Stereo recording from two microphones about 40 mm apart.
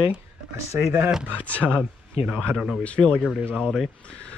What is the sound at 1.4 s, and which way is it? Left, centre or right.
Speech, left.